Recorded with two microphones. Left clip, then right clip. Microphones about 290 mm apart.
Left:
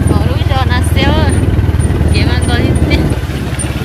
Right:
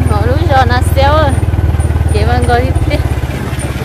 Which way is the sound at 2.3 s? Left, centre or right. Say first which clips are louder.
Right 3 dB; centre.